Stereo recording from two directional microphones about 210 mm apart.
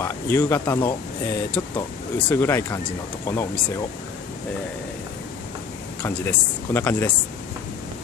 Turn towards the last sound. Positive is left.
turn(degrees=10)  # may be behind; listen again after turning